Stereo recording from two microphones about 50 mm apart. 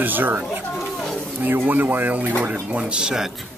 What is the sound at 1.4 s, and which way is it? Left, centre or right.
Speech, right.